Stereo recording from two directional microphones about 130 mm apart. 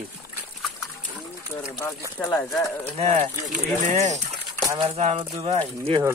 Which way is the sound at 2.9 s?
65° right (ahead or behind).